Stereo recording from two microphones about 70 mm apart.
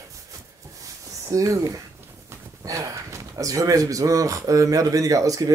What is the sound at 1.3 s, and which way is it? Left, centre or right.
Speech, right.